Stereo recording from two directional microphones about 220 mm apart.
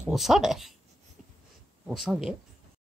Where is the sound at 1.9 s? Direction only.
Centre (ahead or behind).